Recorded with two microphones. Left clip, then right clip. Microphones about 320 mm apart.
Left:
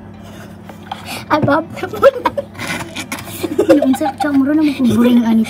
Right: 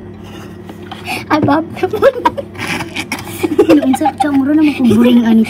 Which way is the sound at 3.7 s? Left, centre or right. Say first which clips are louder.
Right 1 dB; centre.